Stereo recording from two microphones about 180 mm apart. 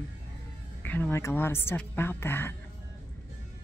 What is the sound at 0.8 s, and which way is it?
Speech, 10° left (ahead or behind).